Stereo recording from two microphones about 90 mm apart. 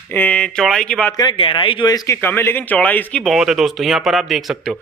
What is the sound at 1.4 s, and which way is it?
Speech, 70° left (ahead or behind).